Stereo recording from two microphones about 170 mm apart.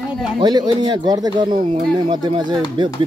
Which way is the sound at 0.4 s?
25° right (ahead or behind).